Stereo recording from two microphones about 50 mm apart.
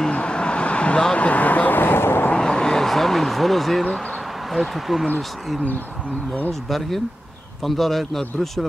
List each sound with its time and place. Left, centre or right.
0.0 s vehicle: left
2.3 s a sound: centre
4.5 s speech: centre
7.6 s speech: centre